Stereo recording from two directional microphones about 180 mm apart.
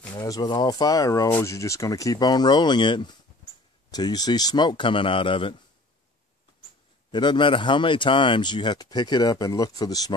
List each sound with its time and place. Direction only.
0.1 s speech: 20° left (ahead or behind)
7.1 s speech: 25° left (ahead or behind)